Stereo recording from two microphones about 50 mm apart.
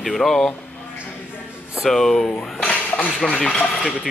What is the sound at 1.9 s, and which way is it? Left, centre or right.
Speech, centre.